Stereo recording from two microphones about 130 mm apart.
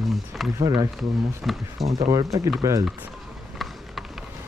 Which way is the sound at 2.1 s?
25° right (ahead or behind).